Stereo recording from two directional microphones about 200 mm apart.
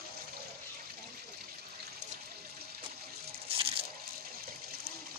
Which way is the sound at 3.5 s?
30° right (ahead or behind).